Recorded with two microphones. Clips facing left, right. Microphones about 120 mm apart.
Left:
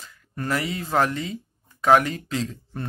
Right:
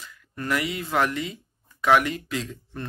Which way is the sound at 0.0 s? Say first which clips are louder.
Left 2 dB; 35° left (ahead or behind).